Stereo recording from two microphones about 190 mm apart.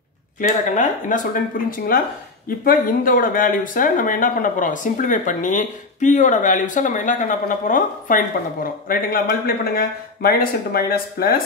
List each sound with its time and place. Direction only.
0.4 s speech: 45° left (ahead or behind)